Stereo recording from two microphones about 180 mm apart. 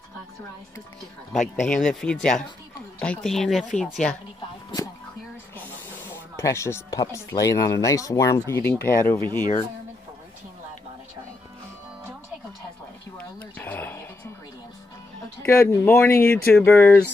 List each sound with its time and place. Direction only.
1.6 s speech: 5° left (ahead or behind)
6.3 s speech: 15° left (ahead or behind)
13.4 s a sound: 10° left (ahead or behind)
15.4 s speech: 15° left (ahead or behind)